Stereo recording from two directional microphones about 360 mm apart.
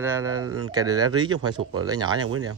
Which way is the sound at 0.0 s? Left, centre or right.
Centre.